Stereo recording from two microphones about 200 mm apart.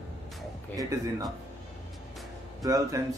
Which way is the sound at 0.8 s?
15° right (ahead or behind).